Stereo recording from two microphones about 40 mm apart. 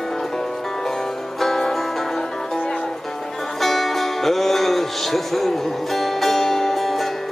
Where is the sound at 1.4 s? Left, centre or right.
Centre.